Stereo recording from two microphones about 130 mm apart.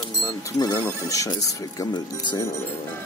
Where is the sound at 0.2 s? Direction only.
30° left (ahead or behind).